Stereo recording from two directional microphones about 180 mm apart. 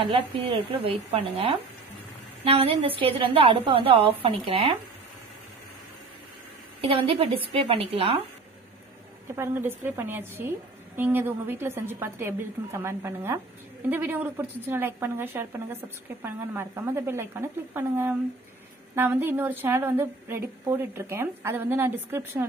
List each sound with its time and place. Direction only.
0.7 s a woman's voice: 30° right (ahead or behind)
6.8 s a woman's voice: 30° right (ahead or behind)
9.3 s a woman's voice: 15° right (ahead or behind)